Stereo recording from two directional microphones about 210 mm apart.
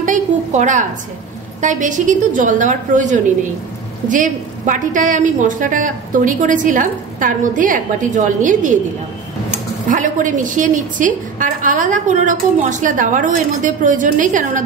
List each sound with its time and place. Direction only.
0.0 s a woman's voice: 35° right (ahead or behind)
9.8 s a woman's voice: 40° right (ahead or behind)